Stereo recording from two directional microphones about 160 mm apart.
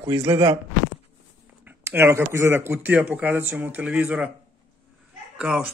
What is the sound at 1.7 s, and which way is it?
Speech, 15° right (ahead or behind).